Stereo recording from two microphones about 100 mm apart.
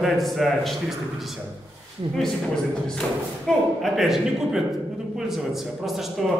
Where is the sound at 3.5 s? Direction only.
Centre (ahead or behind).